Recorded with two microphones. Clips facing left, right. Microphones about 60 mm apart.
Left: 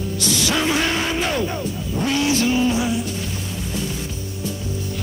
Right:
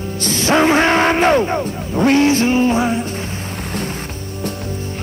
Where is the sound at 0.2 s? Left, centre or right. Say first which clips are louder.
Right 7 dB; right.